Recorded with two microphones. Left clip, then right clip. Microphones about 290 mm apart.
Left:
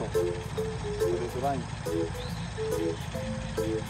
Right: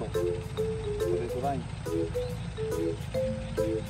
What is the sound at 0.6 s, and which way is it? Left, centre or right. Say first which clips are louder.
Music: right 2 dB; left.